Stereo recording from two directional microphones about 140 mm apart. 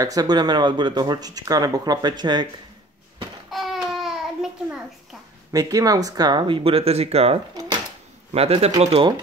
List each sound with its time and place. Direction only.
0.0 s speech: 25° right (ahead or behind)
3.4 s a sound: centre (ahead or behind)
5.5 s speech: 25° right (ahead or behind); by 9.0 s 50° right (ahead or behind)